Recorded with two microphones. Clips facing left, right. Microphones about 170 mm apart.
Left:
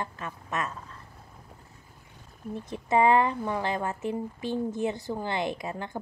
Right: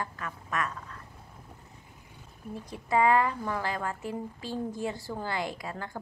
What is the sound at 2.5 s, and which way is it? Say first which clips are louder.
Speech: left 3 dB; 25° left (ahead or behind).